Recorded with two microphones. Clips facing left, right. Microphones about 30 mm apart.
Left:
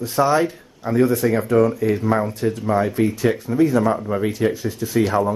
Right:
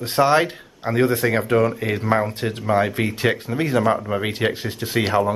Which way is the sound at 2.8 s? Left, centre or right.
Right.